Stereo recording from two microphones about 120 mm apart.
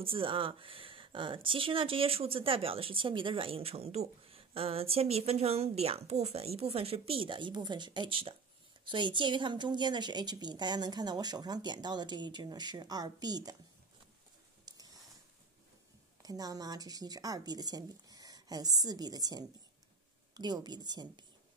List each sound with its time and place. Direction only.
0.0 s a woman's voice: 50° right (ahead or behind)
14.6 s a sound: 30° right (ahead or behind)
16.2 s a woman's voice: 30° right (ahead or behind)